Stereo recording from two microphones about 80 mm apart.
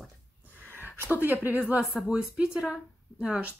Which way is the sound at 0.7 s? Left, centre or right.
Right.